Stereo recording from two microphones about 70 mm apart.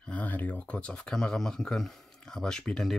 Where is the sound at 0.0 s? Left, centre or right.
Left.